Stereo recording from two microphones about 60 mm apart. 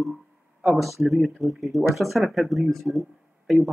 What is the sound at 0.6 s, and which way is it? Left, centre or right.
Speech, centre.